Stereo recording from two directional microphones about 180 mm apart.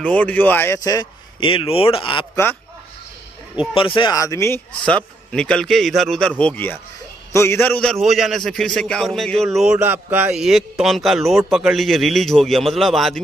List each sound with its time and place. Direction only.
0.0 s speech: 10° left (ahead or behind); by 2.2 s 30° left (ahead or behind)
3.7 s a man's voice: 30° left (ahead or behind); by 13.2 s centre (ahead or behind)